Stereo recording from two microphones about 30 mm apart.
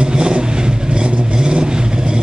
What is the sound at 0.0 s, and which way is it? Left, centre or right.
Vehicle, right.